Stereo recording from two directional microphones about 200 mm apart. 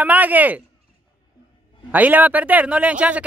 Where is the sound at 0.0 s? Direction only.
10° right (ahead or behind).